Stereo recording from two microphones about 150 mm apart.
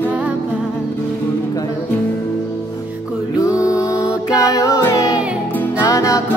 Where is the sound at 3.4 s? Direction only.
20° left (ahead or behind).